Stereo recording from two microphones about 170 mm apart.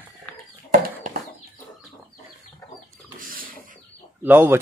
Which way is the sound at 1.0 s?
45° right (ahead or behind).